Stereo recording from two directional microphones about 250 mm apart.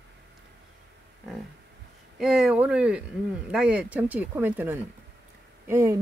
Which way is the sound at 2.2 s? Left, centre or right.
Centre.